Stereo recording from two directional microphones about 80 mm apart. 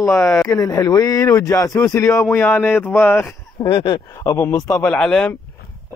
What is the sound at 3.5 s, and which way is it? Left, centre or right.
Speech, left.